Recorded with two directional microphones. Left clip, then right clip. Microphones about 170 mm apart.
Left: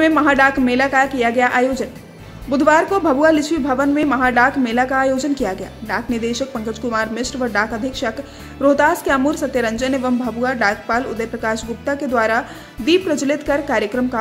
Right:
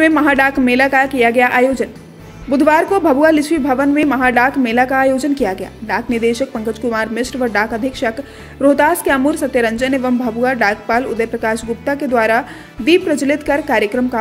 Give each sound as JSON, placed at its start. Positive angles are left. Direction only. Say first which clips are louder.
{"t": 0.0, "sound": "a woman's voice", "louder": "right 1 dB", "side_deg": -20}